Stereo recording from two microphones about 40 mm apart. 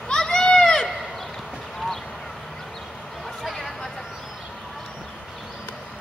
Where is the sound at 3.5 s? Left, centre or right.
Centre.